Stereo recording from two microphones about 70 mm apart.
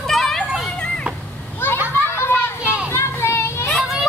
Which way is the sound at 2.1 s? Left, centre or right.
Left.